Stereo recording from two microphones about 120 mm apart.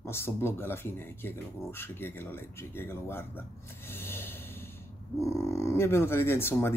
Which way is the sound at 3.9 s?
20° left (ahead or behind).